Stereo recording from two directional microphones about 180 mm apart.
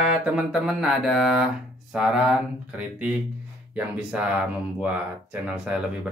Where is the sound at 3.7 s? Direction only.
5° right (ahead or behind).